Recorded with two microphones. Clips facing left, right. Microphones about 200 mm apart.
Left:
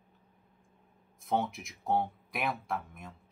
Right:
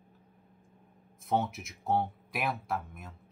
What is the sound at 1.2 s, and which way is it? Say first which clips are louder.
Speech: right 1 dB; centre (ahead or behind).